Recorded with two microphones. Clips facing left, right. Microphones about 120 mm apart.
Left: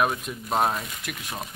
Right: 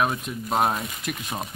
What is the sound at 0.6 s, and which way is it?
Speech, 20° right (ahead or behind).